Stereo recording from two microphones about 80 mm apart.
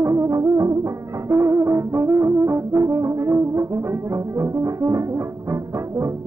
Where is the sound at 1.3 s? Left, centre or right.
Right.